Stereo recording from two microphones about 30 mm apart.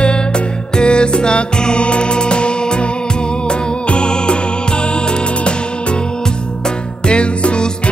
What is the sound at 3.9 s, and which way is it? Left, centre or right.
Music, left.